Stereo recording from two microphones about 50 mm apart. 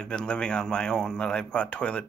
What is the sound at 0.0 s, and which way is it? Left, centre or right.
Speech, centre.